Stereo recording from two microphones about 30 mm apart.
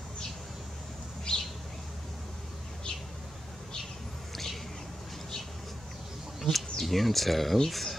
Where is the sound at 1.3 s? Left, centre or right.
Left.